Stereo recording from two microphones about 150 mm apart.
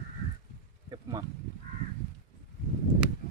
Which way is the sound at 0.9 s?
25° right (ahead or behind).